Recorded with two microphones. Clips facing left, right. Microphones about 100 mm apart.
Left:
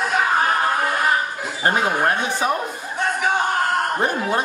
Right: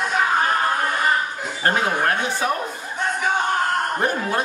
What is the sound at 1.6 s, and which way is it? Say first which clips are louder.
Speech: left 1 dB; 10° left (ahead or behind).